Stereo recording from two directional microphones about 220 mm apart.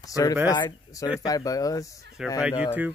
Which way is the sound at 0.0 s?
15° left (ahead or behind).